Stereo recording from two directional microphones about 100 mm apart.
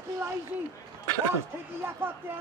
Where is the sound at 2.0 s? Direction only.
20° right (ahead or behind).